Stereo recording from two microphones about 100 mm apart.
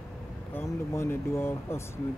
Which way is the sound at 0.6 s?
25° left (ahead or behind).